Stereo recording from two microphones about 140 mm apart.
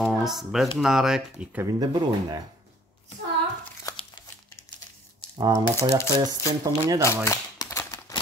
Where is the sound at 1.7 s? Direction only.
25° right (ahead or behind).